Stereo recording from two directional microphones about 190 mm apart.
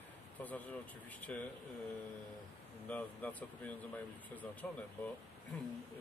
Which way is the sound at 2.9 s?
10° left (ahead or behind).